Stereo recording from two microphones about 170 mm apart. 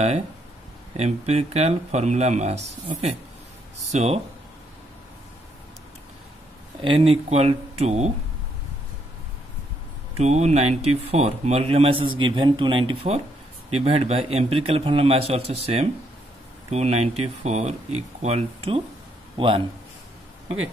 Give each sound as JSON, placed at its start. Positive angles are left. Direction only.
{"t": 0.9, "sound": "speech", "side_deg": -40}
{"t": 6.8, "sound": "speech", "side_deg": -35}
{"t": 10.1, "sound": "a man's voice", "side_deg": -40}